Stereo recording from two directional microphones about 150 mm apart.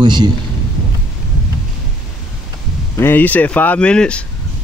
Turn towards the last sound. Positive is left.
turn(degrees=5)  # may be behind; listen again after turning